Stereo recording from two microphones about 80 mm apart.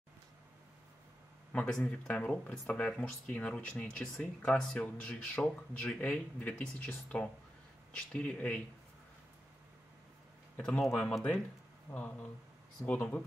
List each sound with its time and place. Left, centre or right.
1.7 s speech: centre
10.6 s speech: centre
11.9 s speech: left
12.8 s speech: centre